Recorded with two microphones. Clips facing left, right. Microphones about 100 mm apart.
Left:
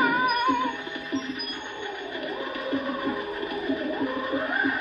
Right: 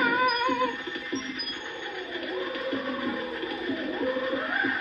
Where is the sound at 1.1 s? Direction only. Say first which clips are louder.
Left 5 dB; 45° left (ahead or behind).